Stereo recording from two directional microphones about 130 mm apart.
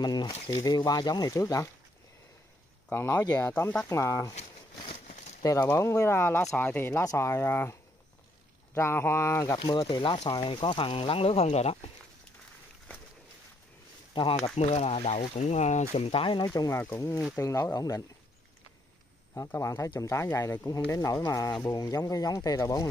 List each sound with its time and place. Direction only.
0.0 s speech: 35° left (ahead or behind)
0.3 s speech: 50° left (ahead or behind)
0.6 s speech: 30° left (ahead or behind)
2.9 s speech: 15° left (ahead or behind)
5.4 s speech: 25° left (ahead or behind)
8.7 s speech: 20° left (ahead or behind)
9.6 s speech: 35° left (ahead or behind); by 11.9 s 50° left (ahead or behind)
14.3 s speech: 55° left (ahead or behind); by 18.0 s 25° left (ahead or behind)
19.3 s speech: 25° left (ahead or behind)